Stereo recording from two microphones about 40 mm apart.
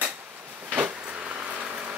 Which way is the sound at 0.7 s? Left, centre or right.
Right.